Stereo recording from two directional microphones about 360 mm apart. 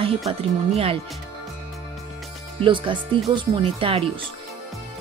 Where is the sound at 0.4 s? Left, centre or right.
Centre.